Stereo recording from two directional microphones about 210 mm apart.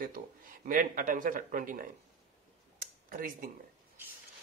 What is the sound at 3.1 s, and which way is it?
Speech, 40° right (ahead or behind).